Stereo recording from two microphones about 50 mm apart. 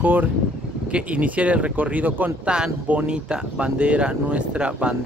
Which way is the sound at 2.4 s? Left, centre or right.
Centre.